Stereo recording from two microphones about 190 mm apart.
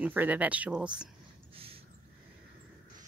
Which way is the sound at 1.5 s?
30° right (ahead or behind).